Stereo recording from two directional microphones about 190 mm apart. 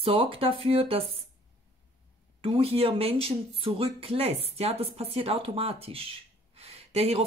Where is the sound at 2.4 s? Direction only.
30° right (ahead or behind).